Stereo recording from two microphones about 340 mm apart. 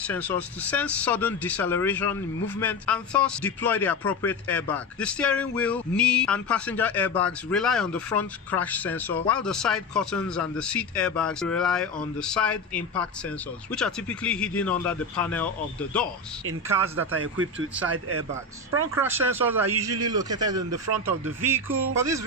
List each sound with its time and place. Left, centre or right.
0.1 s speech: centre
16.6 s a man's voice: centre
17.1 s speech: right
18.9 s a man's voice: centre
21.9 s a man's voice: centre